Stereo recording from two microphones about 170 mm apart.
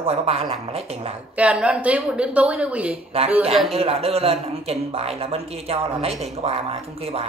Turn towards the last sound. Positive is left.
turn(degrees=-35)  # may be behind; listen again after turning